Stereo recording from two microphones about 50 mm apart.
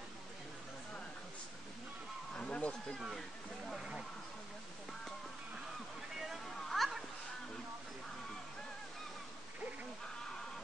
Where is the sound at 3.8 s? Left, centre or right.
Centre.